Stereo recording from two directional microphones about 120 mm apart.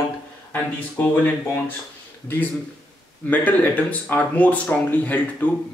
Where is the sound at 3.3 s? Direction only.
15° left (ahead or behind).